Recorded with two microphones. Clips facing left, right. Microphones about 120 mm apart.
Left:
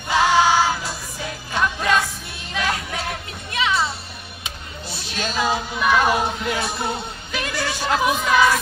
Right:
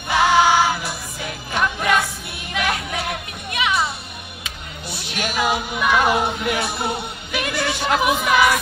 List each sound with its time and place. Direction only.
0.1 s music: 15° right (ahead or behind)